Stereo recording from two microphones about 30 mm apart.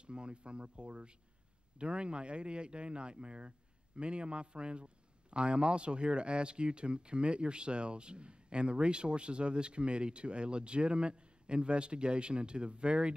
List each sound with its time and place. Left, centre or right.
0.0 s speech: right